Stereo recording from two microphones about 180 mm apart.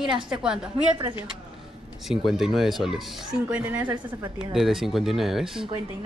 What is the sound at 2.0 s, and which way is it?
A woman's voice, centre (ahead or behind).